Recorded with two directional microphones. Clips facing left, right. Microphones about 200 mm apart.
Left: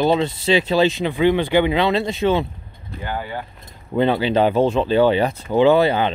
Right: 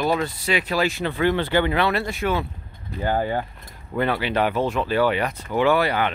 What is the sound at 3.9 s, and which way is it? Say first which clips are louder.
Speech: left 5 dB; 25° left (ahead or behind).